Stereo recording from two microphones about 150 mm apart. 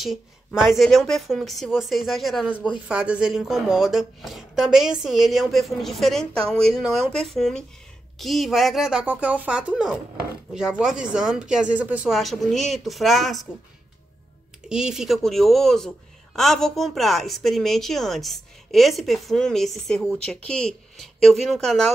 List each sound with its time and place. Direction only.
0.6 s a woman's voice: centre (ahead or behind)
14.7 s a woman's voice: 5° right (ahead or behind)